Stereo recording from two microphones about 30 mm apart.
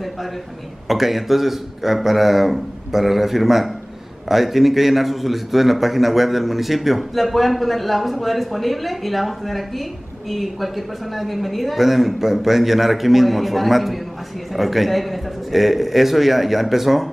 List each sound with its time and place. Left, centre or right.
0.8 s a man's voice: centre